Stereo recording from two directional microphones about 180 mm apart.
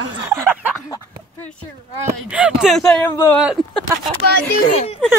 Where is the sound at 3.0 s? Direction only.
15° left (ahead or behind).